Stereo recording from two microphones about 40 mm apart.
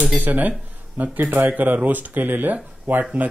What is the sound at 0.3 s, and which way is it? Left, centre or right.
Speech, right.